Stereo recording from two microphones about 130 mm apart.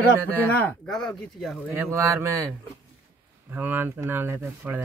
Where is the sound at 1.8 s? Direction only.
20° right (ahead or behind).